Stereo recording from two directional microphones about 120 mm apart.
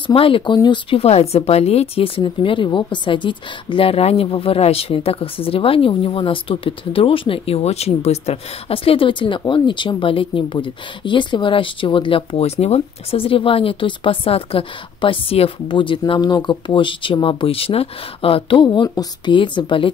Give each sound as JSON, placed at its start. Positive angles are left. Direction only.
{"t": 0.0, "sound": "a woman's voice", "side_deg": 50}